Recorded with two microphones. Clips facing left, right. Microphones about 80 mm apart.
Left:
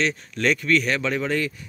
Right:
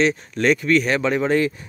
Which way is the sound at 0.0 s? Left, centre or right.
Centre.